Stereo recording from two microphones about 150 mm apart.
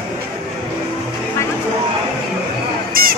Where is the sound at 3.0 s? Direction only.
75° right (ahead or behind).